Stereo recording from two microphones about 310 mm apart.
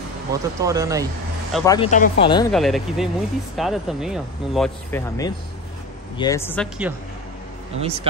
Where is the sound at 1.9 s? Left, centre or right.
Left.